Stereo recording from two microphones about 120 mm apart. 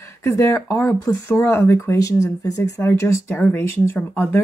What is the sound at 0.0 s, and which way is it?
Speech, 20° left (ahead or behind).